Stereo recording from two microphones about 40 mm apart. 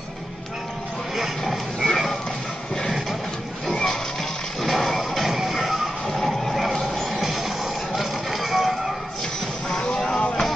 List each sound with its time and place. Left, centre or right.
1.4 s a sound: centre
3.6 s music: centre
9.7 s music: centre